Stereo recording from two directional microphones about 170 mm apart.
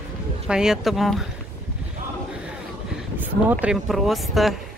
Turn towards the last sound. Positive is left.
turn(degrees=0)  # may be behind; listen again after turning